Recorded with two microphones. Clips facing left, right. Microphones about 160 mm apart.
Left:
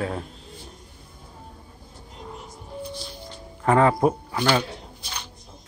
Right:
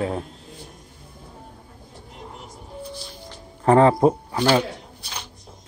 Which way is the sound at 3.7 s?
30° right (ahead or behind).